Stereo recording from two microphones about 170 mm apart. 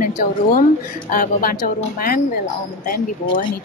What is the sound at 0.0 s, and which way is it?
A woman's voice, 50° left (ahead or behind).